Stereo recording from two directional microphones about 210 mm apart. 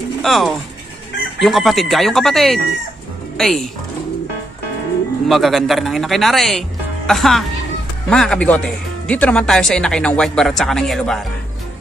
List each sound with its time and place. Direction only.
0.2 s speech: centre (ahead or behind)
5.3 s speech: centre (ahead or behind)